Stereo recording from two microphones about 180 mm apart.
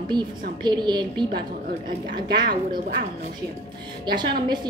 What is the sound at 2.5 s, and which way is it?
Speech, 65° right (ahead or behind).